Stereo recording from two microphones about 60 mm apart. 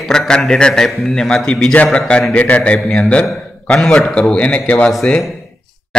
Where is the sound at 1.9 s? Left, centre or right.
Centre.